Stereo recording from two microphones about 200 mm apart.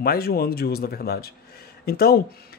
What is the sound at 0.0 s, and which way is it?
Speech, 50° left (ahead or behind).